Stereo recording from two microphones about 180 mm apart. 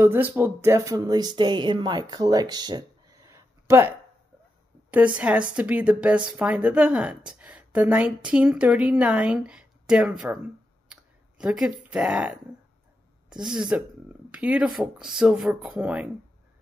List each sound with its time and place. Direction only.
0.0 s speech: 10° right (ahead or behind)
4.9 s a woman's voice: 10° right (ahead or behind)
10.9 s a sound: 5° right (ahead or behind)
11.9 s a woman's voice: 5° right (ahead or behind)